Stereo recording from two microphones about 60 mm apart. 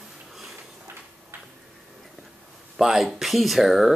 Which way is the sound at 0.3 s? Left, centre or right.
Centre.